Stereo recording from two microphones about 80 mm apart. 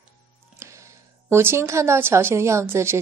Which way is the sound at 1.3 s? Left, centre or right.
Right.